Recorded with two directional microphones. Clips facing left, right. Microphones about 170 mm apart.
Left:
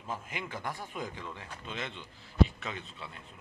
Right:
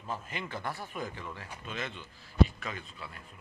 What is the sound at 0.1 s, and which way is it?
A man's voice, 15° left (ahead or behind).